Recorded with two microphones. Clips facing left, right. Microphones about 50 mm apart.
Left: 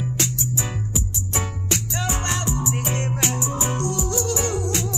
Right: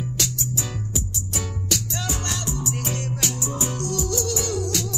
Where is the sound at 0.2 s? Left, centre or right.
Left.